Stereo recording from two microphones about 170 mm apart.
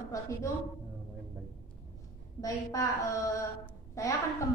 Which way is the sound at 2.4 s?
20° left (ahead or behind).